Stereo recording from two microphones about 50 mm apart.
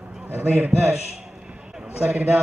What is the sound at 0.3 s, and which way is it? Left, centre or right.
Speech, right.